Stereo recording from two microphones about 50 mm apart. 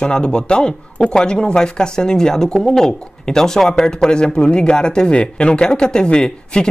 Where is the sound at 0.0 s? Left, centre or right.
Centre.